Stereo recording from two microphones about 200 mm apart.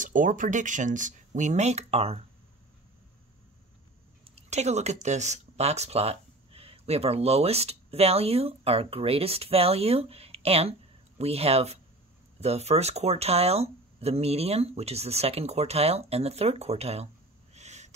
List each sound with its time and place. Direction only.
0.0 s speech: 40° right (ahead or behind)
4.2 s speech: 35° right (ahead or behind)
17.6 s a sound: 35° right (ahead or behind)